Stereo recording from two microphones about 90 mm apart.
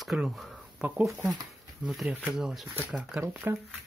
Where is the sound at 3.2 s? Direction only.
25° right (ahead or behind).